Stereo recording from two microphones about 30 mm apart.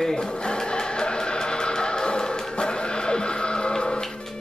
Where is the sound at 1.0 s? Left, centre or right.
Left.